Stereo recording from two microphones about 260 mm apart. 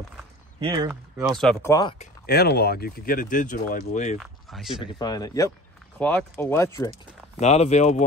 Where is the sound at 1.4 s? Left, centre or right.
Centre.